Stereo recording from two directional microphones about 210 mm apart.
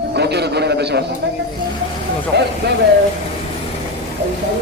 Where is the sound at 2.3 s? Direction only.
50° right (ahead or behind).